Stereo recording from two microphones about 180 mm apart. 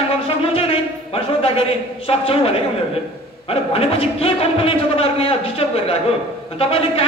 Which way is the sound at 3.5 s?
30° left (ahead or behind).